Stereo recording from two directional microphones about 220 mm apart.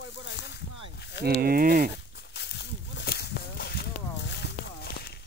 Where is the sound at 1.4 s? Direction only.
40° right (ahead or behind).